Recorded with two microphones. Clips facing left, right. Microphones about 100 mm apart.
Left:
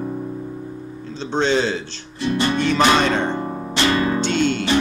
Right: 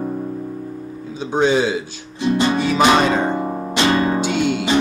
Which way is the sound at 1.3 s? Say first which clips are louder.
Right 3 dB; 10° right (ahead or behind).